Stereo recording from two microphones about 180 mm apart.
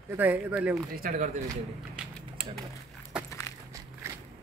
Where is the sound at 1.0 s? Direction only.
45° right (ahead or behind).